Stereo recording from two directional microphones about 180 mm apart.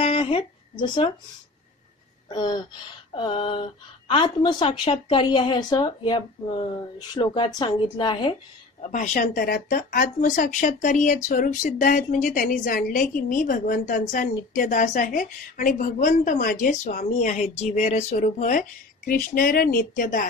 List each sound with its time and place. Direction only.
0.0 s a sound: 30° left (ahead or behind)
2.2 s a woman's voice: 25° left (ahead or behind)
8.8 s a woman's voice: 45° left (ahead or behind)